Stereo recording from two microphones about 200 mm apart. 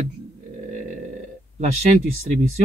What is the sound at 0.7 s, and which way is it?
Burping, 40° right (ahead or behind).